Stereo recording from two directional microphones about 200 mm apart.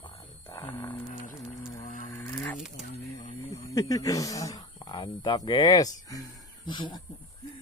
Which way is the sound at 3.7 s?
15° left (ahead or behind).